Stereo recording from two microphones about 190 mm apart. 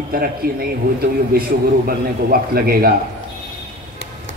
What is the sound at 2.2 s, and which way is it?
Speech, 50° right (ahead or behind).